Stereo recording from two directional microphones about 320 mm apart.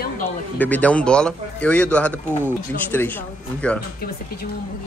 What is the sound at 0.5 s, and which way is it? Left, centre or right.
A man's voice, centre.